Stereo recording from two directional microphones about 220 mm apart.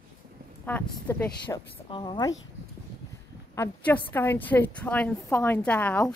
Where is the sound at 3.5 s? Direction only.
10° left (ahead or behind).